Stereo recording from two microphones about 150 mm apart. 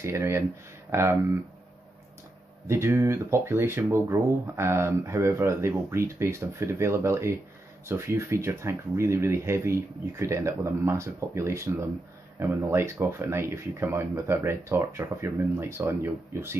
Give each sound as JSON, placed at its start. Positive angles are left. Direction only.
{"t": 0.0, "sound": "speech", "side_deg": -20}
{"t": 2.7, "sound": "speech", "side_deg": -15}